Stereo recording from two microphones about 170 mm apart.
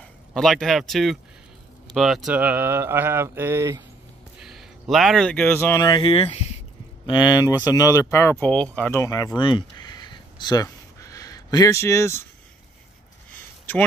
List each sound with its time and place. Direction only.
0.3 s speech: 5° left (ahead or behind); by 3.8 s 15° right (ahead or behind)
4.4 s speech: centre (ahead or behind); by 6.0 s 20° left (ahead or behind)
6.0 s speech: 35° left (ahead or behind); by 9.0 s 10° left (ahead or behind)
9.0 s a sound: 20° left (ahead or behind)